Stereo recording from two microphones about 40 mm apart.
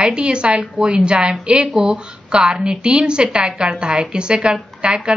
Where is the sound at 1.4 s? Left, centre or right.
Right.